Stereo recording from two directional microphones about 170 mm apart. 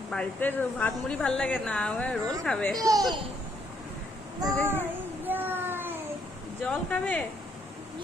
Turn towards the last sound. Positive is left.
turn(degrees=10)  # may be behind; listen again after turning